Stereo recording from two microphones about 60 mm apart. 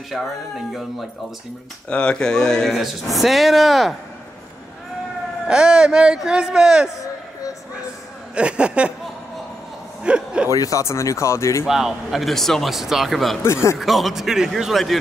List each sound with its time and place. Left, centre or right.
0.1 s a man's voice: centre
1.9 s speech: centre
2.7 s a man's voice: centre
5.5 s speech: centre
8.4 s speech: centre
10.0 s speech: centre
10.5 s speech: left
10.8 s speech: left
11.6 s a man's voice: centre
13.4 s speech: left
13.7 s a man's voice: centre